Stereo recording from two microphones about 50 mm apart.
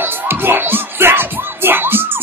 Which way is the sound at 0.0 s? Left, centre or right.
Right.